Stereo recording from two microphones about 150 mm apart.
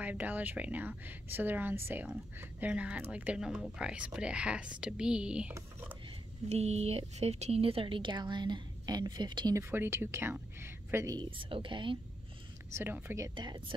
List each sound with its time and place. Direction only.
0.0 s a woman's voice: 10° right (ahead or behind)
5.5 s speech: 15° right (ahead or behind)
6.5 s speech: 45° right (ahead or behind); by 9.6 s 30° right (ahead or behind)
9.6 s a woman's voice: 15° right (ahead or behind)
11.1 s speech: 35° right (ahead or behind)
12.7 s a woman's voice: 15° right (ahead or behind)
13.3 s speech: 30° right (ahead or behind)